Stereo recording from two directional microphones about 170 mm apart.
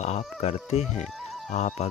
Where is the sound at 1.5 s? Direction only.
40° left (ahead or behind).